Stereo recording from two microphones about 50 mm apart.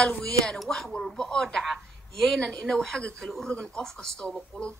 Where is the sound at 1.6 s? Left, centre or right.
Centre.